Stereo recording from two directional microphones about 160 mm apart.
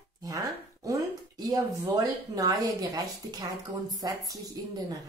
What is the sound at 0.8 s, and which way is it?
Speech, 20° right (ahead or behind).